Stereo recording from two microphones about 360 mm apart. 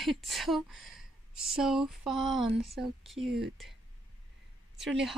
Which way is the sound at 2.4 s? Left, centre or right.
Centre.